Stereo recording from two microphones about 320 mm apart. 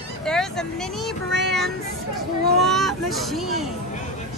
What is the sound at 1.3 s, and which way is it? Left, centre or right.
Child singing, right.